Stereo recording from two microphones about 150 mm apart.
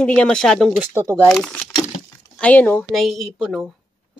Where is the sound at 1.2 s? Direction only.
5° left (ahead or behind).